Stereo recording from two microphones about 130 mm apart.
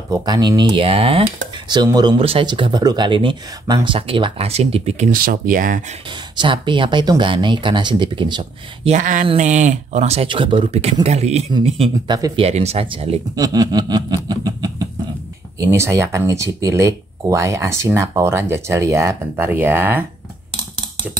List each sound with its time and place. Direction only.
0.2 s speech: 35° right (ahead or behind)
2.1 s speech: 45° right (ahead or behind); by 5.9 s 85° right
6.0 s speech: 40° right (ahead or behind)
8.8 s speech: 75° right (ahead or behind)
10.2 s speech: 40° right (ahead or behind)
13.4 s speech: 30° right (ahead or behind)